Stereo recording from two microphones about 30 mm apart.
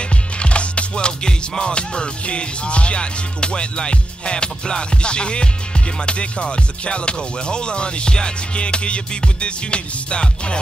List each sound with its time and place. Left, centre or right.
0.4 s music: left